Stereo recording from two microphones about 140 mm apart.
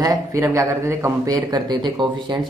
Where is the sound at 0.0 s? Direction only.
25° right (ahead or behind).